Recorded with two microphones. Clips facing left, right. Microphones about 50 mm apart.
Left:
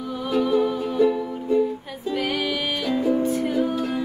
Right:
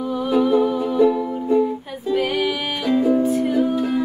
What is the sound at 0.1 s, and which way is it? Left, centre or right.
Music, centre.